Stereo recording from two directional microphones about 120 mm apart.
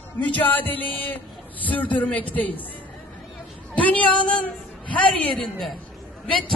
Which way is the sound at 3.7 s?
10° left (ahead or behind).